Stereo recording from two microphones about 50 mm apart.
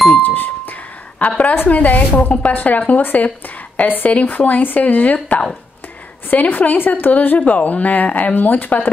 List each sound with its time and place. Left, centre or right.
0.2 s music: left
1.5 s speech: left